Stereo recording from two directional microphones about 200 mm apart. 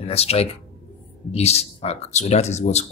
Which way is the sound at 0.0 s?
30° left (ahead or behind).